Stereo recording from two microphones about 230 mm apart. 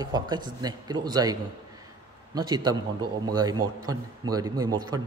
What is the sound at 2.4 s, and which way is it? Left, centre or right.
Speech, centre.